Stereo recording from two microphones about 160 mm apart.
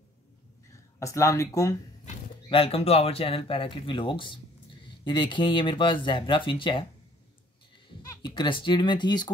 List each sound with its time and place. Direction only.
0.9 s speech: 20° left (ahead or behind)
2.5 s speech: 35° left (ahead or behind)
8.1 s speech: 30° left (ahead or behind)